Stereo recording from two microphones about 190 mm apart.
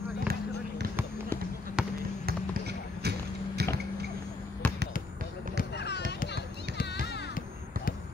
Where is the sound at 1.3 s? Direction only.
10° left (ahead or behind).